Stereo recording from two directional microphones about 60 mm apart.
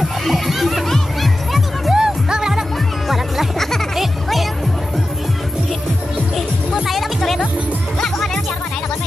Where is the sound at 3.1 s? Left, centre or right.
Centre.